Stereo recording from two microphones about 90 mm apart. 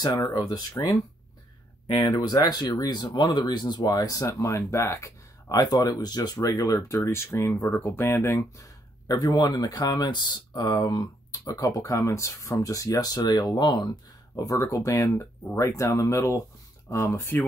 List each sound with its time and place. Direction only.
0.3 s speech: 50° left (ahead or behind)
3.1 s speech: 60° left (ahead or behind); by 8.5 s 25° left (ahead or behind)
9.0 s speech: 45° left (ahead or behind); by 17.5 s 25° left (ahead or behind)